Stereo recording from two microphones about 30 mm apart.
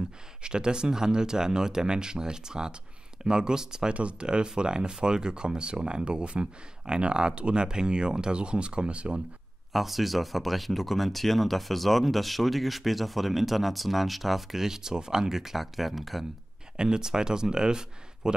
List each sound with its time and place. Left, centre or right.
0.4 s speech: right
9.7 s speech: centre
16.7 s speech: right